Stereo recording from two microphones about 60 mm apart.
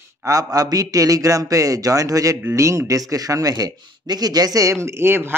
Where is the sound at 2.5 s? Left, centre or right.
Right.